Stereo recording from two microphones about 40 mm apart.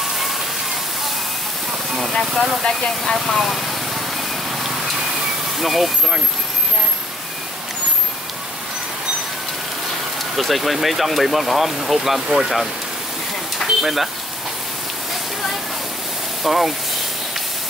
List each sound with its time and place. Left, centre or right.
2.6 s speech: centre
3.3 s vehicle: centre
5.6 s speech: centre
10.3 s speech: centre
13.6 s a sound: centre
16.4 s speech: centre